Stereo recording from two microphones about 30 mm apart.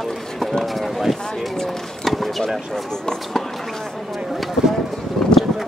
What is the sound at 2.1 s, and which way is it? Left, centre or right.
Speech, centre.